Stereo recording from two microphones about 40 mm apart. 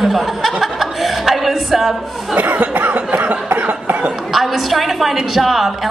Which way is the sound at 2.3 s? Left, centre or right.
Right.